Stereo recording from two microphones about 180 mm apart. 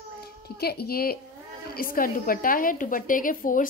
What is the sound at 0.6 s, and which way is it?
A woman's voice, 60° left (ahead or behind).